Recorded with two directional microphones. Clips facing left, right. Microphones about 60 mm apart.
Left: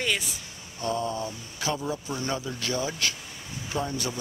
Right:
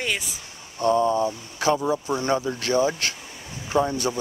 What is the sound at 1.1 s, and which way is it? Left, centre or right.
Speech, right.